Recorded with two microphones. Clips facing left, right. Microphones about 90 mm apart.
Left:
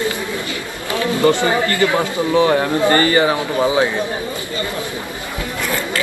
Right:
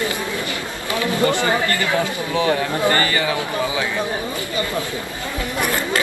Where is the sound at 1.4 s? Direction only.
20° left (ahead or behind).